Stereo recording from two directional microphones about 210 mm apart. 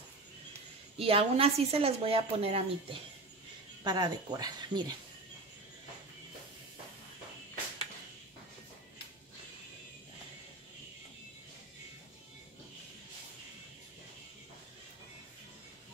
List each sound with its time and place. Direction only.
0.9 s a woman's voice: 25° right (ahead or behind)